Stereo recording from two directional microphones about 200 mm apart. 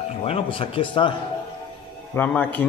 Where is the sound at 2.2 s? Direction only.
10° left (ahead or behind).